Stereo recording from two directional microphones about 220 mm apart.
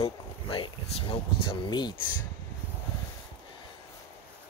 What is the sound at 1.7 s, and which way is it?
Speech, 20° left (ahead or behind).